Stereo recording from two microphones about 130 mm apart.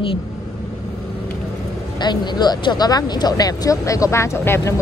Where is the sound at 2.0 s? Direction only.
35° left (ahead or behind).